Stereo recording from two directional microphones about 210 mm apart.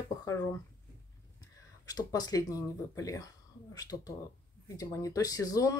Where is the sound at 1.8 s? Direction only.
20° left (ahead or behind).